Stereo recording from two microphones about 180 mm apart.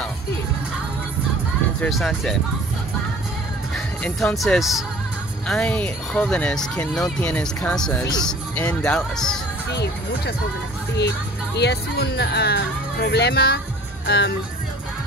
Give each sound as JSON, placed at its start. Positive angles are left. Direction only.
{"t": 1.8, "sound": "speech", "side_deg": 0}
{"t": 3.7, "sound": "speech", "side_deg": 5}
{"t": 9.7, "sound": "speech", "side_deg": 65}